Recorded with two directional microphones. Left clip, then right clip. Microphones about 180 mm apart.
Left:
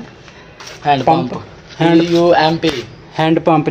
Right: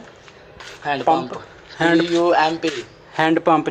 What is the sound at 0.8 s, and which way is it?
Speech, 40° left (ahead or behind).